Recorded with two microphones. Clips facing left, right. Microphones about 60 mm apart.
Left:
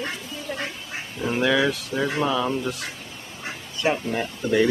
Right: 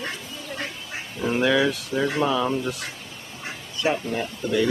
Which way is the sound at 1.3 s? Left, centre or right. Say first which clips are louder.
Even; centre.